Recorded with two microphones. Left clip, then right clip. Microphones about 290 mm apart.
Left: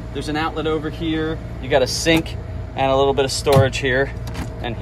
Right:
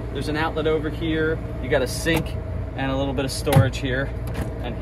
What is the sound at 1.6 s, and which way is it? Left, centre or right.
Speech, left.